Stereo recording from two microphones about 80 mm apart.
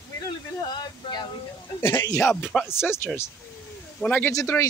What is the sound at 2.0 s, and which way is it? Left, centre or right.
Speech, left.